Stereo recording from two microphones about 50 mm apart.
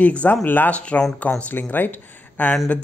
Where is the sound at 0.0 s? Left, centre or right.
Left.